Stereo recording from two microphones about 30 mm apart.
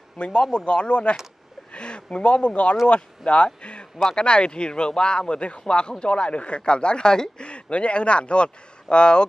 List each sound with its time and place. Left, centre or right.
0.2 s speech: left
7.4 s speech: left